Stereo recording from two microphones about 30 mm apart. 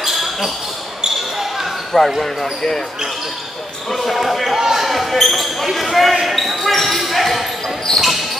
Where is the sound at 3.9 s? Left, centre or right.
Centre.